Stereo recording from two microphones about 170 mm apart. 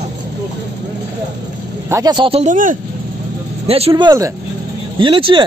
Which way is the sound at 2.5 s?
50° right (ahead or behind).